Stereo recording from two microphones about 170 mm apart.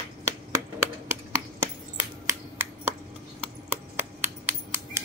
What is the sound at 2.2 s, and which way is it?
Finger snapping, 15° right (ahead or behind).